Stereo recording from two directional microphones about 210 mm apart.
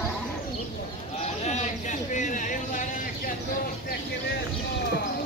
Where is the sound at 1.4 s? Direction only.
35° left (ahead or behind).